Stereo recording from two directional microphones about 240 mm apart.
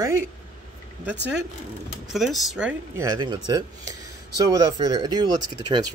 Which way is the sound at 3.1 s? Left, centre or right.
Centre.